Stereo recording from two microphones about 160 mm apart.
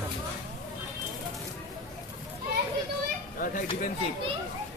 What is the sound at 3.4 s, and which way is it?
Speech, 60° left (ahead or behind).